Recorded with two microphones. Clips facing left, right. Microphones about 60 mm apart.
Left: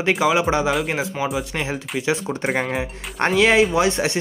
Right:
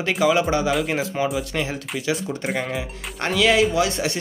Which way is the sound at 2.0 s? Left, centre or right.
Left.